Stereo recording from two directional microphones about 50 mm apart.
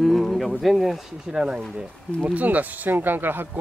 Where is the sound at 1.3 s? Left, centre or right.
Centre.